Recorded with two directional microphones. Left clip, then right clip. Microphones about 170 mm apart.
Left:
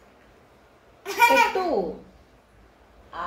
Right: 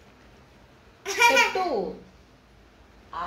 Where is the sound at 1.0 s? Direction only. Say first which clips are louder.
Left 1 dB; 20° left (ahead or behind).